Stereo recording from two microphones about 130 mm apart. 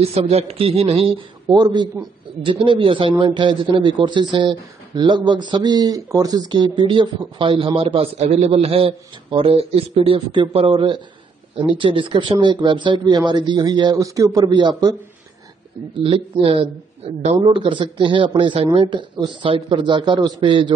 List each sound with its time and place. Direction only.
0.0 s a man's voice: 50° right (ahead or behind)
1.5 s a man's voice: 35° right (ahead or behind)
16.0 s a man's voice: 45° right (ahead or behind)
17.4 s a man's voice: 40° right (ahead or behind)